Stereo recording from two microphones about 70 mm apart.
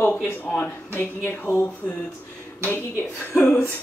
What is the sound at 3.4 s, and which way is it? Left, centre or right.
Speech, centre.